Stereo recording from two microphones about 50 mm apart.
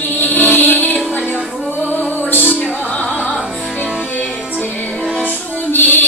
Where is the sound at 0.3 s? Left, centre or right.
Left.